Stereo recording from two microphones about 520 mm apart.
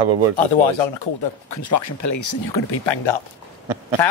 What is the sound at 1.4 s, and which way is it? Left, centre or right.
Speech, left.